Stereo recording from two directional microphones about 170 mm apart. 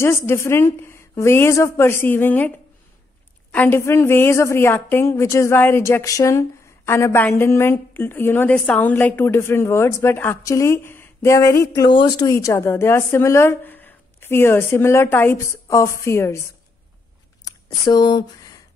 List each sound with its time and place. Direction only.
0.0 s a woman's voice: 15° left (ahead or behind)
3.5 s a woman's voice: 10° left (ahead or behind)
17.5 s speech: 25° left (ahead or behind)